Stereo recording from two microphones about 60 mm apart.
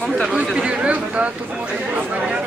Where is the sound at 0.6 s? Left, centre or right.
Centre.